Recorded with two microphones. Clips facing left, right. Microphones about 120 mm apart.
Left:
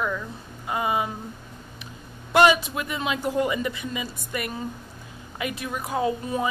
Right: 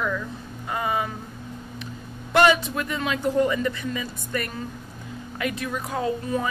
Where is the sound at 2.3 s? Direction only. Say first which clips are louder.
Even; 15° left (ahead or behind).